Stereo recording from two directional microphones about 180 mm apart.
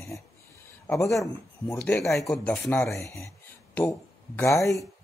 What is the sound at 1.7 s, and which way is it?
Speech, 5° left (ahead or behind).